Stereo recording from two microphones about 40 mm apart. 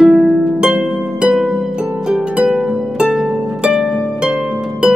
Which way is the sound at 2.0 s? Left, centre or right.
Right.